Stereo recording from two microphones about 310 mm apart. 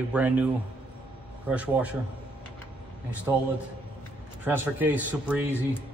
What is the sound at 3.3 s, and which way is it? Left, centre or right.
Speech, centre.